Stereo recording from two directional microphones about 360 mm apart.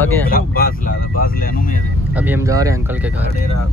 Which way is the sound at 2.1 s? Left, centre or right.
Centre.